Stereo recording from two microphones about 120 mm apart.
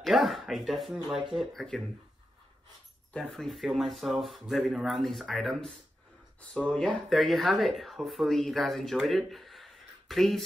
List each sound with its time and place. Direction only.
0.0 s speech: centre (ahead or behind)
3.1 s speech: 5° left (ahead or behind)